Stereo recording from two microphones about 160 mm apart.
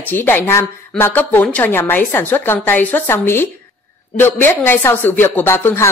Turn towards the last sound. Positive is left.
turn(degrees=15)  # may be behind; listen again after turning